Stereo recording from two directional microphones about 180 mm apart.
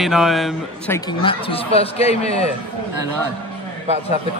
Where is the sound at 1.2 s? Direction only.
30° left (ahead or behind).